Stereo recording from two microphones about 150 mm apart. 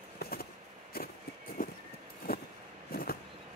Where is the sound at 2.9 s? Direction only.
90° left.